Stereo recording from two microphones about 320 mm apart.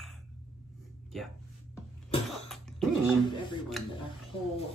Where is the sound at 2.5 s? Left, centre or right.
Centre.